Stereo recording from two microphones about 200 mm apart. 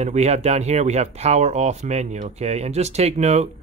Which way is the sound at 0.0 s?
35° right (ahead or behind).